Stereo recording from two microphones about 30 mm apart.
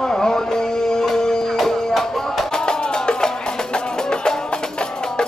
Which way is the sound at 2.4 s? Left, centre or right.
Left.